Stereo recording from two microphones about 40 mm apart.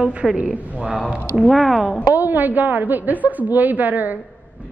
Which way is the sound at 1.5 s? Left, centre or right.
Centre.